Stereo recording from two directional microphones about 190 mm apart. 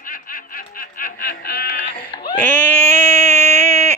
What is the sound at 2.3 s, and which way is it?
Baby cry, 10° left (ahead or behind).